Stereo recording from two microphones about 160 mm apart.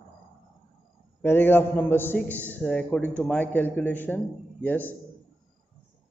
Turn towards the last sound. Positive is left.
turn(degrees=10)  # may be behind; listen again after turning